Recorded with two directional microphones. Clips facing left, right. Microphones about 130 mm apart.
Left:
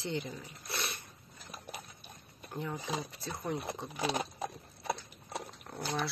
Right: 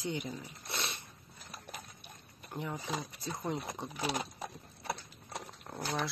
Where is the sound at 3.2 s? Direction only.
15° right (ahead or behind).